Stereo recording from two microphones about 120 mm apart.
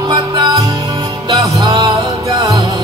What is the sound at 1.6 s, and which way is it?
Music, 35° right (ahead or behind).